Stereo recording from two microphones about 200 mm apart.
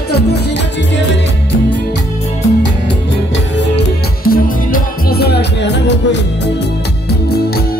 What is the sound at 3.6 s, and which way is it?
Music, 55° left (ahead or behind).